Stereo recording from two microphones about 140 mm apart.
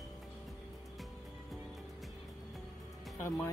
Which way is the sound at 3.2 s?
20° left (ahead or behind).